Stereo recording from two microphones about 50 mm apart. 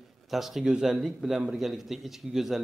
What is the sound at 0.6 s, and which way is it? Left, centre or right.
Speech, centre.